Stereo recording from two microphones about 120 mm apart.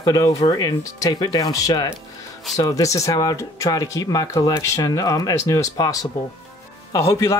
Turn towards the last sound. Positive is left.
turn(degrees=25)  # may be behind; listen again after turning